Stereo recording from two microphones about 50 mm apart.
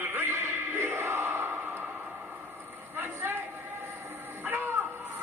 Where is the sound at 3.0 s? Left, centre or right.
Right.